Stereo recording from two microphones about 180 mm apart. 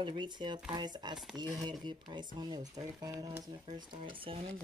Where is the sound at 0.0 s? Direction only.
25° right (ahead or behind).